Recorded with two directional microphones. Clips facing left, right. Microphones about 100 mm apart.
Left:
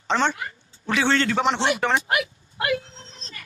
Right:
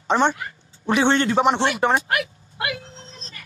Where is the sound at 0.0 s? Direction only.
15° right (ahead or behind).